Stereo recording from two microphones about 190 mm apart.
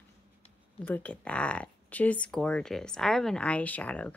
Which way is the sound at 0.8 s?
10° left (ahead or behind).